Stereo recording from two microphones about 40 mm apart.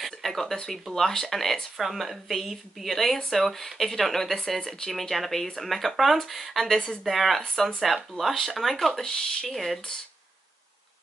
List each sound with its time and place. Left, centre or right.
0.0 s a sound: centre
0.8 s speech: centre
1.8 s speech: centre
9.0 s speech: centre
9.5 s speech: centre